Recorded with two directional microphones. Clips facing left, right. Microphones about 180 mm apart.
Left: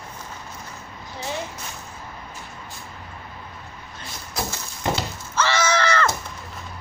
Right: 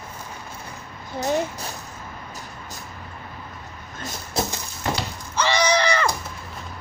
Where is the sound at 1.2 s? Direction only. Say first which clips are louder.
Right 7 dB; 40° right (ahead or behind).